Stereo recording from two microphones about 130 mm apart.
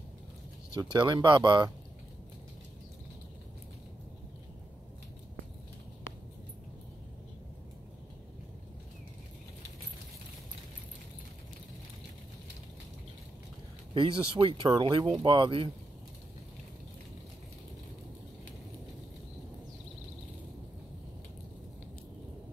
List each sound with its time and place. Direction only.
0.7 s speech: 35° right (ahead or behind)
13.9 s speech: 40° right (ahead or behind)